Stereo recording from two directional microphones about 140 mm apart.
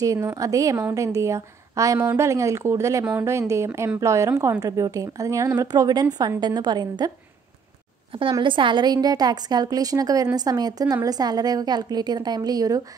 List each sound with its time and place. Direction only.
0.0 s a woman's voice: 25° right (ahead or behind)
8.1 s speech: 35° right (ahead or behind)